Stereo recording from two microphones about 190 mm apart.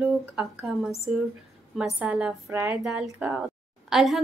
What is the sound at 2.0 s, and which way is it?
A woman's voice, 5° right (ahead or behind).